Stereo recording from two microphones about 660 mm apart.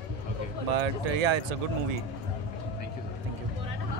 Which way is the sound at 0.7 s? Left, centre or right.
Right.